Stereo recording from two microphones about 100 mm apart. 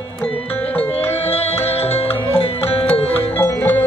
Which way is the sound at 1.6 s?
90° left.